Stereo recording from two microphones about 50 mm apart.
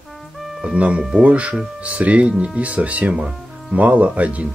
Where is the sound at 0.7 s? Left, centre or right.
Right.